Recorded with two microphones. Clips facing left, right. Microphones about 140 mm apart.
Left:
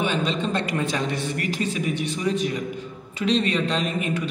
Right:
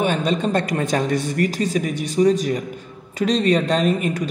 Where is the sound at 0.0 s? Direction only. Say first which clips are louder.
Right 4 dB; 45° right (ahead or behind).